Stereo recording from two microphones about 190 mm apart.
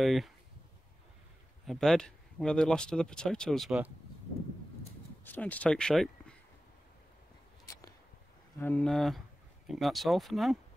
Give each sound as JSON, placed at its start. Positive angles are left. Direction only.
{"t": 0.0, "sound": "speech", "side_deg": 0}
{"t": 1.7, "sound": "speech", "side_deg": 5}
{"t": 5.2, "sound": "speech", "side_deg": 10}
{"t": 7.6, "sound": "a sound", "side_deg": 15}
{"t": 8.5, "sound": "speech", "side_deg": 10}